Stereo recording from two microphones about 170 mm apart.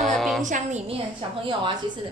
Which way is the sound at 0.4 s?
45° right (ahead or behind).